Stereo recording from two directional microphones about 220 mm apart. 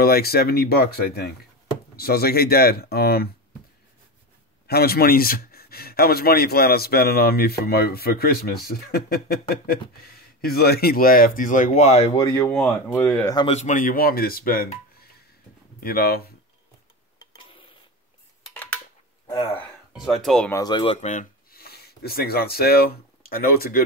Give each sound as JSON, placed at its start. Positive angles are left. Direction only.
{"t": 0.0, "sound": "speech", "side_deg": 45}
{"t": 4.6, "sound": "speech", "side_deg": 45}
{"t": 12.2, "sound": "speech", "side_deg": 10}
{"t": 13.3, "sound": "speech", "side_deg": 25}
{"t": 15.8, "sound": "speech", "side_deg": 45}
{"t": 17.2, "sound": "tick-tock", "side_deg": 20}
{"t": 18.5, "sound": "a sound", "side_deg": 5}
{"t": 19.2, "sound": "speech", "side_deg": 15}
{"t": 19.9, "sound": "speech", "side_deg": 0}
{"t": 20.5, "sound": "speech", "side_deg": 20}